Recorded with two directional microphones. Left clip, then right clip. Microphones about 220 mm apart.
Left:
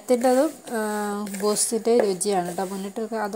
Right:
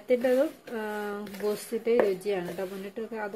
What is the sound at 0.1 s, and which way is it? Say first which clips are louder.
Speech: left 5 dB; 25° left (ahead or behind).